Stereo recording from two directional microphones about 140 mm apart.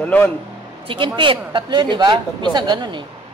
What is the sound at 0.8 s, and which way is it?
Speech, 35° right (ahead or behind).